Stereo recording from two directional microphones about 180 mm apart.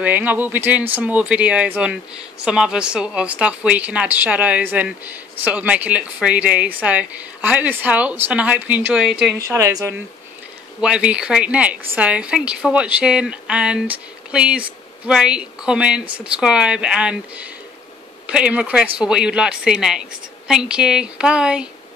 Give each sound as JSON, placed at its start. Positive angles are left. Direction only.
{"t": 0.0, "sound": "a woman's voice", "side_deg": -10}
{"t": 10.8, "sound": "speech", "side_deg": -5}